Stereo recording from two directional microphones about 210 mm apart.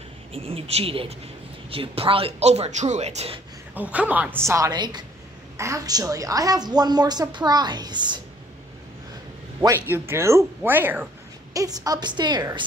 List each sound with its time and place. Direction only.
0.3 s a woman's voice: 25° right (ahead or behind)
3.9 s a woman's voice: 5° right (ahead or behind)
9.8 s a woman's voice: 10° right (ahead or behind)